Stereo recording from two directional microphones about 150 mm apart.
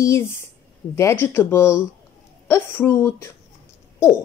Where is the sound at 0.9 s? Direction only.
20° left (ahead or behind).